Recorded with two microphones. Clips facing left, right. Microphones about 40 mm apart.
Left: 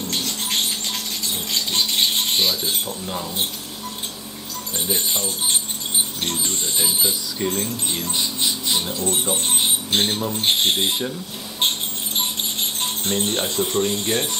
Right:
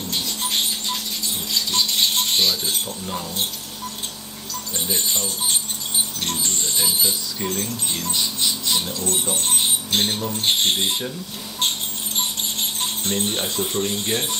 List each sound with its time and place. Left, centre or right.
2.0 s speech: centre
4.8 s speech: centre
13.1 s speech: centre